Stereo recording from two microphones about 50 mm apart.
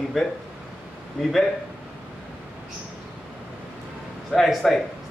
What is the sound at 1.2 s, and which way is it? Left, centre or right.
Speech, centre.